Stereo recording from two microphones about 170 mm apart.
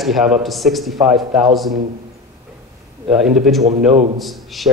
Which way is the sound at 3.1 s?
5° right (ahead or behind).